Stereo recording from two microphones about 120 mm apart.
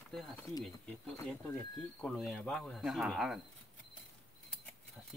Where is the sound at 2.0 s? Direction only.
5° left (ahead or behind).